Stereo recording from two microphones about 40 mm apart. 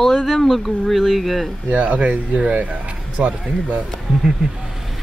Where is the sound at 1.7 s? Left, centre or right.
Right.